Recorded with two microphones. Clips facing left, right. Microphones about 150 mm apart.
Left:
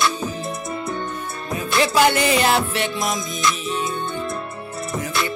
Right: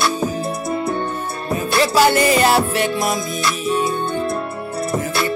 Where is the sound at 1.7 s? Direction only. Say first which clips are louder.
Right 2 dB; 35° right (ahead or behind).